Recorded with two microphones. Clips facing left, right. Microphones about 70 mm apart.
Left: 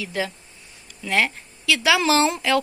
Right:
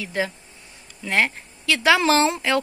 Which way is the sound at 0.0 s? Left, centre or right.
Right.